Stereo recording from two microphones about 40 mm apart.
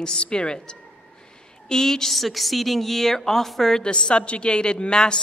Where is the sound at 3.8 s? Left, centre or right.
Left.